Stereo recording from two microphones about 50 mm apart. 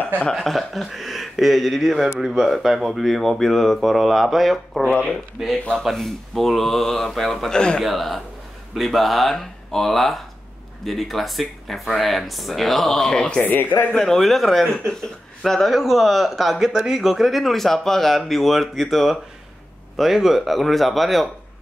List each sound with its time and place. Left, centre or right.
0.3 s speech: centre
5.9 s speech: centre
13.5 s speech: left
13.9 s speech: centre
15.7 s speech: centre
17.0 s speech: centre